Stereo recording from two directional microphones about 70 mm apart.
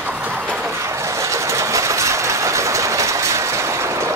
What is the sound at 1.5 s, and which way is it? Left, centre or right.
Train, right.